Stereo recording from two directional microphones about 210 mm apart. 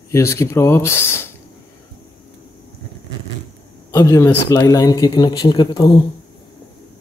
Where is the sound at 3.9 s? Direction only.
15° left (ahead or behind).